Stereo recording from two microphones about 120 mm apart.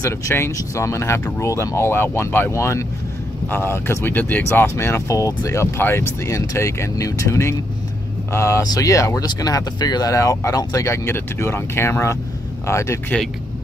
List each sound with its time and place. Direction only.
0.0 s speech: 25° left (ahead or behind)